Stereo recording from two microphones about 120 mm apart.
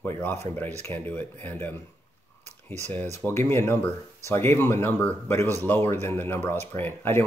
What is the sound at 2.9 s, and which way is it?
Speech, 15° left (ahead or behind).